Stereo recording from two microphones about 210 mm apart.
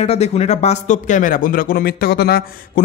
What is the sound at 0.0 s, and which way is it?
Speech, 30° left (ahead or behind).